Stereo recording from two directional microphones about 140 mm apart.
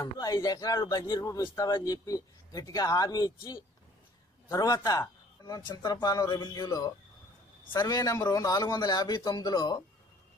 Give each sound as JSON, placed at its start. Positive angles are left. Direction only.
{"t": 0.0, "sound": "a man's voice", "side_deg": 25}
{"t": 4.5, "sound": "a man's voice", "side_deg": 25}